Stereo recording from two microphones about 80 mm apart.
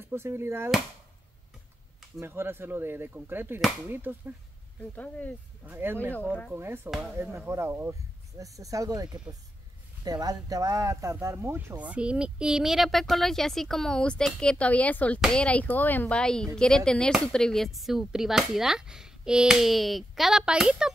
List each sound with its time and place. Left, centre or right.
0.0 s speech: right
2.1 s speech: right
4.9 s speech: centre
5.7 s speech: right
8.4 s speech: right; by 16.2 s left
16.2 s a woman's voice: centre